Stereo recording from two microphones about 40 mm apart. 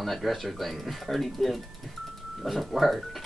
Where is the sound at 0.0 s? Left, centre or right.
Centre.